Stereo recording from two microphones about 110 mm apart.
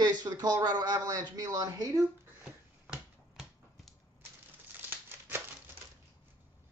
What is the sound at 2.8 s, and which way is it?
Finger snapping, 5° right (ahead or behind).